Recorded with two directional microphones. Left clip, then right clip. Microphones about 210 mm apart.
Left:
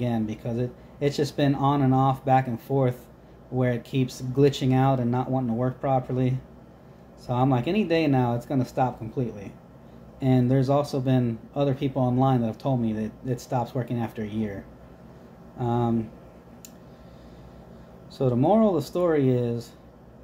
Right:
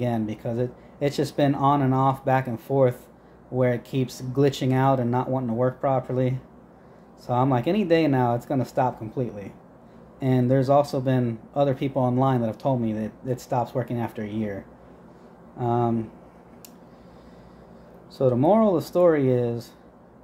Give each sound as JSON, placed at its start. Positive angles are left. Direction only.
{"t": 0.0, "sound": "speech", "side_deg": -20}
{"t": 15.6, "sound": "speech", "side_deg": -20}
{"t": 18.1, "sound": "speech", "side_deg": -20}